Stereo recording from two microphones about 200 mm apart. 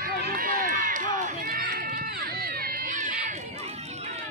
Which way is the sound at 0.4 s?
45° right (ahead or behind).